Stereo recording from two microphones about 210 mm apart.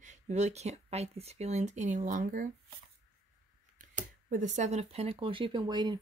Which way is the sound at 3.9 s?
35° right (ahead or behind).